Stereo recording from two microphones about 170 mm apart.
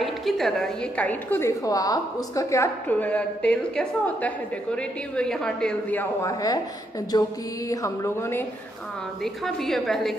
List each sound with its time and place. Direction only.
0.0 s a woman's voice: centre (ahead or behind); by 6.6 s 20° left (ahead or behind)
7.1 s music: 25° left (ahead or behind)
7.7 s a woman's voice: 20° left (ahead or behind)
9.2 s a woman's voice: centre (ahead or behind)